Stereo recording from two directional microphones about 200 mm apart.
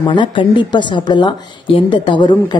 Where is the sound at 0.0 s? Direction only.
25° left (ahead or behind).